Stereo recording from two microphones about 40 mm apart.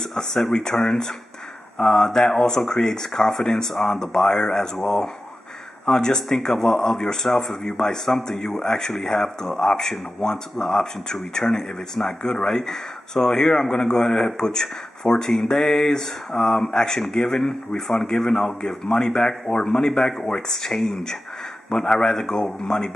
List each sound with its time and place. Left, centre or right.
0.1 s a man's voice: centre
18.0 s a man's voice: centre